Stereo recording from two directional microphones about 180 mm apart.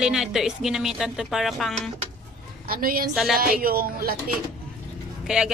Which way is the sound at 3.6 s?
55° right (ahead or behind).